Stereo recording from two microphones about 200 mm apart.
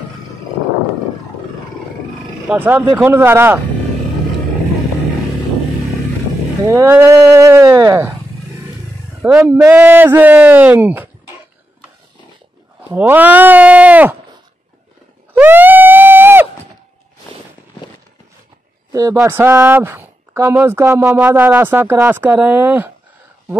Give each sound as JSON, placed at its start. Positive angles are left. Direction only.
{"t": 2.4, "sound": "speech", "side_deg": -10}
{"t": 6.7, "sound": "speech", "side_deg": -10}
{"t": 9.2, "sound": "speech", "side_deg": -10}
{"t": 12.9, "sound": "speech", "side_deg": -10}
{"t": 15.3, "sound": "screaming", "side_deg": -10}
{"t": 18.9, "sound": "speech", "side_deg": -15}